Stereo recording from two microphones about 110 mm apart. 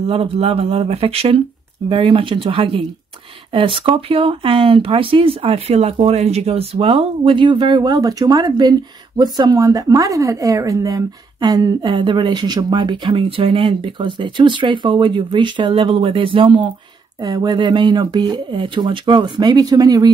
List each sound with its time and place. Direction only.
0.0 s speech: 60° right (ahead or behind)
17.2 s speech: 40° right (ahead or behind)